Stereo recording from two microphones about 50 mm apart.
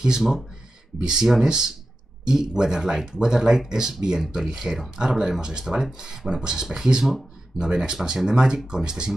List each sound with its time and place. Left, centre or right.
0.0 s speech: centre